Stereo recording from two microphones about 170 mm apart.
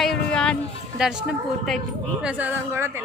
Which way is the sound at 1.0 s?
5° right (ahead or behind).